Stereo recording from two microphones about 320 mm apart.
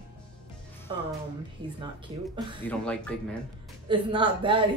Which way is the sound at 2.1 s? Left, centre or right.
Centre.